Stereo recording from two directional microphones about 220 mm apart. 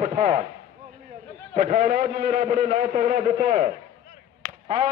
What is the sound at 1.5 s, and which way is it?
A man's voice, 40° right (ahead or behind).